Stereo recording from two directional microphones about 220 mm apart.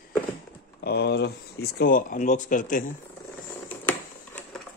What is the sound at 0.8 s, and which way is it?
Speech, 45° left (ahead or behind).